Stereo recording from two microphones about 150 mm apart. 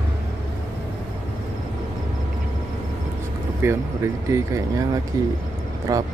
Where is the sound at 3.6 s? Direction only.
15° right (ahead or behind).